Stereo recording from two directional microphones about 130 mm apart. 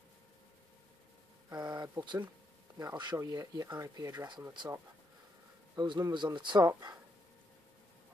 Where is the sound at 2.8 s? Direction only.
30° right (ahead or behind).